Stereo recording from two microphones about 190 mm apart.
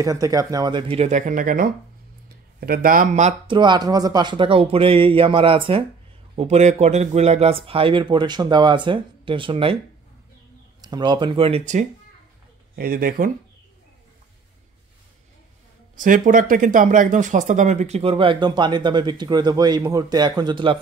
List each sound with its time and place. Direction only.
0.0 s speech: 20° right (ahead or behind); by 3.3 s 40° right (ahead or behind)
3.4 s speech: 25° right (ahead or behind)
10.8 s speech: 20° right (ahead or behind)
12.7 s speech: 50° right (ahead or behind)
16.0 s speech: 45° right (ahead or behind); by 20.8 s 25° right (ahead or behind)